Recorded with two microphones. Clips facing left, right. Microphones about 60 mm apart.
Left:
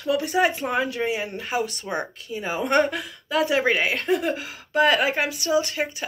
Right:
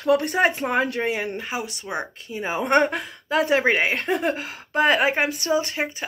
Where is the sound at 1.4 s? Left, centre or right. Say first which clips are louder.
Left 3 dB; centre; by 5.0 s right.